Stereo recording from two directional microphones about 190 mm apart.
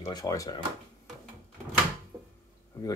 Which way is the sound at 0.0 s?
15° left (ahead or behind).